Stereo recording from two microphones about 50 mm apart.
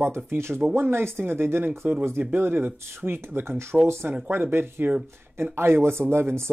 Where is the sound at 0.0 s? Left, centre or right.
Right.